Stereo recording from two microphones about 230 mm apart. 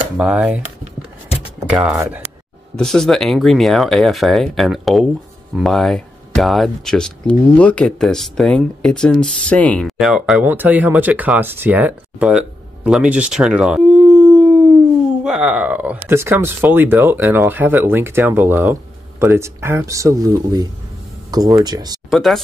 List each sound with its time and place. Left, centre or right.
0.2 s speech: centre
1.7 s speech: centre
22.1 s speech: centre